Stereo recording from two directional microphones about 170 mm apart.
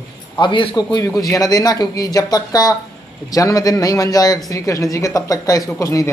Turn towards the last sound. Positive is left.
turn(degrees=20)  # may be behind; listen again after turning